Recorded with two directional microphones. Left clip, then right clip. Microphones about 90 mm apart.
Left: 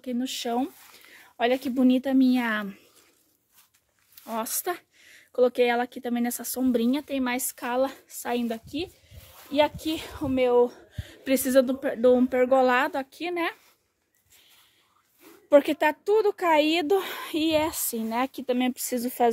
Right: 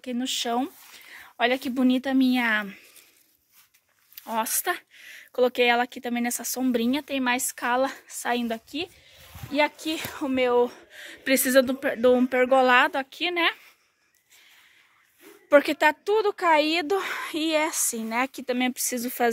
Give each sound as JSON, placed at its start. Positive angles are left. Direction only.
{"t": 0.2, "sound": "a woman's voice", "side_deg": 15}
{"t": 0.9, "sound": "a sound", "side_deg": 20}
{"t": 1.4, "sound": "a woman's voice", "side_deg": 20}
{"t": 4.4, "sound": "a woman's voice", "side_deg": 10}
{"t": 7.2, "sound": "speech", "side_deg": -5}
{"t": 8.6, "sound": "speech", "side_deg": -20}
{"t": 9.5, "sound": "speech", "side_deg": -30}
{"t": 10.6, "sound": "a sound", "side_deg": 20}
{"t": 11.2, "sound": "a woman's voice", "side_deg": 10}
{"t": 15.5, "sound": "a woman's voice", "side_deg": 25}
{"t": 16.6, "sound": "a child's voice", "side_deg": 65}
{"t": 17.6, "sound": "a woman's voice", "side_deg": 30}